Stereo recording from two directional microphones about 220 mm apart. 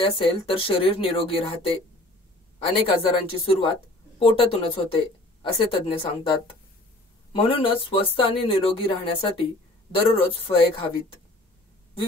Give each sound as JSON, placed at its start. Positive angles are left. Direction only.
{"t": 0.0, "sound": "speech", "side_deg": 25}
{"t": 7.3, "sound": "speech", "side_deg": 25}